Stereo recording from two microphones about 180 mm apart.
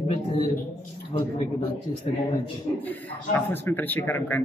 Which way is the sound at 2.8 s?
10° left (ahead or behind).